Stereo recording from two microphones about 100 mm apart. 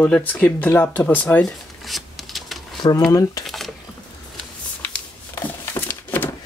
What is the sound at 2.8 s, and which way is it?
Speech, 40° left (ahead or behind).